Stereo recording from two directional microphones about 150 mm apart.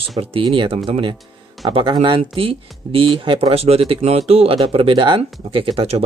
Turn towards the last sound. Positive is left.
turn(degrees=-40)  # may be behind; listen again after turning